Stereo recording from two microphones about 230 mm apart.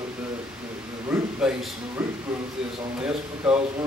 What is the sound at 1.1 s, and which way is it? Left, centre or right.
Speech, centre.